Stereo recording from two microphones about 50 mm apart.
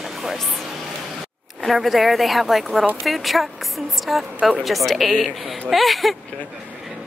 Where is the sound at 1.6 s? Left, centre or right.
Centre.